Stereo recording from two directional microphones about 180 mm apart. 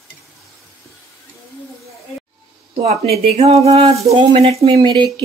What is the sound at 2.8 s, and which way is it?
Speech, 35° right (ahead or behind).